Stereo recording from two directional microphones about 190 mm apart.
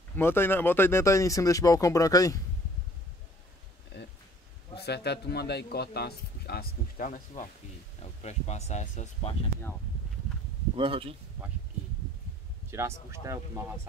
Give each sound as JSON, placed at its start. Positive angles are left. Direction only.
{"t": 0.1, "sound": "speech", "side_deg": 10}
{"t": 3.9, "sound": "a sound", "side_deg": 60}
{"t": 4.7, "sound": "a man's voice", "side_deg": 60}
{"t": 10.8, "sound": "speech", "side_deg": -30}
{"t": 12.7, "sound": "speech", "side_deg": -15}